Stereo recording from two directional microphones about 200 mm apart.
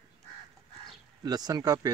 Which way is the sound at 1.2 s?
20° right (ahead or behind).